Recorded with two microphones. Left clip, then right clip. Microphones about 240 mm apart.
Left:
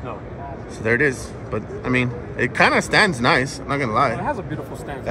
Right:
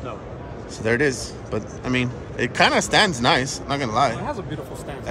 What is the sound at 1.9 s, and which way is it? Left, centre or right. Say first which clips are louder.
Speech: left 3 dB; right.